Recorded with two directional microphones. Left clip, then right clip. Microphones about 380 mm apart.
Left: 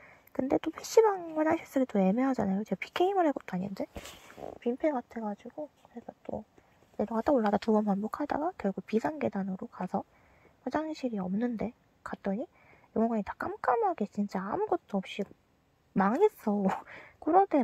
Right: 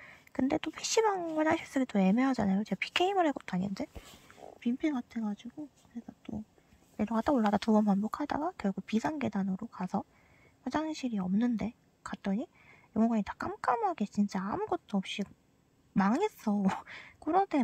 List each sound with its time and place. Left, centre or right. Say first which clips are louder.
0.0 s a woman's voice: right 1 dB; centre
7.0 s a woman's voice: left 2 dB; centre